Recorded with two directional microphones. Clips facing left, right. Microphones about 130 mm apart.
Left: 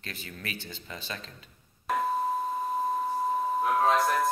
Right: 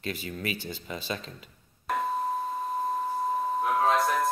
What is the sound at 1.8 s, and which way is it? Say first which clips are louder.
Doorbell: left 1 dB; centre (ahead or behind).